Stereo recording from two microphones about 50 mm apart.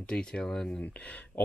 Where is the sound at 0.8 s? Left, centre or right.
Left.